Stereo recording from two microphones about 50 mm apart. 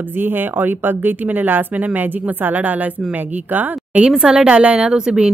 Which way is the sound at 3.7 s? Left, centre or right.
Right.